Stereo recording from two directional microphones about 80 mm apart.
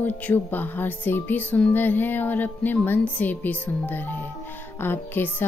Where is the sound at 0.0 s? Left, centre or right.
Left.